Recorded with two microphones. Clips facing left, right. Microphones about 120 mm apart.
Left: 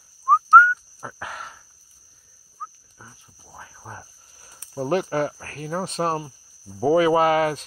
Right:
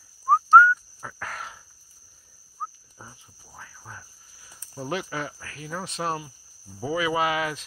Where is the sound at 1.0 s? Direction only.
5° left (ahead or behind).